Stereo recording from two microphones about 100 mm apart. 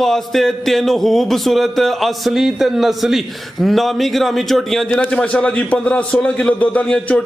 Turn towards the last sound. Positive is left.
turn(degrees=10)  # may be behind; listen again after turning